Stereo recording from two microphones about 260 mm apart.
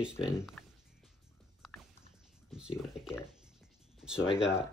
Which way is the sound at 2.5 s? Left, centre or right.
Centre.